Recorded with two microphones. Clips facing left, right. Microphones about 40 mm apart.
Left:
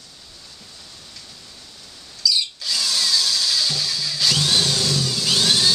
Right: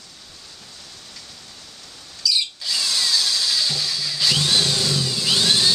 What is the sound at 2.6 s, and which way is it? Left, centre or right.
Tools, centre.